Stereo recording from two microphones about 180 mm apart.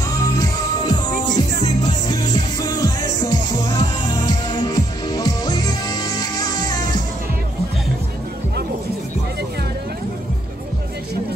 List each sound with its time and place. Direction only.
0.2 s music: 20° left (ahead or behind)